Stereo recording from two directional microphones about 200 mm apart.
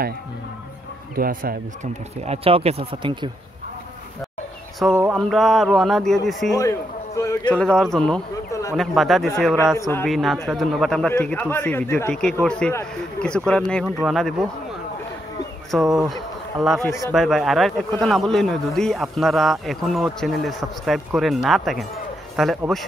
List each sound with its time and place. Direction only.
1.1 s speech: 45° right (ahead or behind)
2.2 s speech: 30° right (ahead or behind)
4.8 s a man's voice: centre (ahead or behind)
8.5 s a sound: 15° left (ahead or behind)
8.7 s a man's voice: centre (ahead or behind)
9.8 s speech: 15° left (ahead or behind)
10.0 s a man's voice: centre (ahead or behind)
15.7 s a man's voice: centre (ahead or behind)
16.8 s speech: 15° left (ahead or behind)
17.1 s a man's voice: centre (ahead or behind)